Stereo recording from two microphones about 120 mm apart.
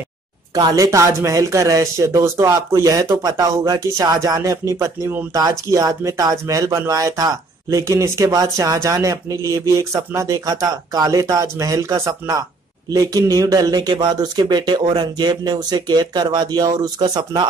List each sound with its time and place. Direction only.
0.6 s speech: 30° right (ahead or behind)